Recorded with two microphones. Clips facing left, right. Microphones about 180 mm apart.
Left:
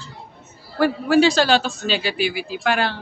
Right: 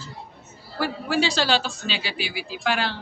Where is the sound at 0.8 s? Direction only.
50° left (ahead or behind).